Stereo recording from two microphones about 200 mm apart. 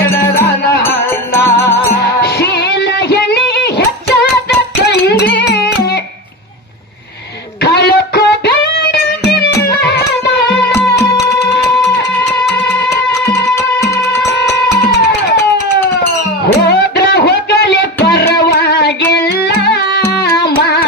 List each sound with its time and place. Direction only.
1.3 s music: 15° left (ahead or behind)
1.9 s music: 55° left (ahead or behind)
4.8 s music: 55° left (ahead or behind)
7.7 s music: 55° left (ahead or behind)
12.9 s music: 15° left (ahead or behind)
16.6 s music: 55° left (ahead or behind)